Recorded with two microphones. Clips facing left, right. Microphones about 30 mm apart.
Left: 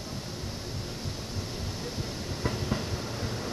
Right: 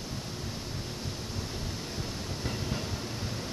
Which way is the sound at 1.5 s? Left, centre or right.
Centre.